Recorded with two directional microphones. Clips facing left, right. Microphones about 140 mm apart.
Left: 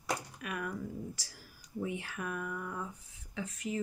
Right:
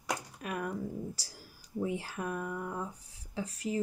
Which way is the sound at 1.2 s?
35° right (ahead or behind).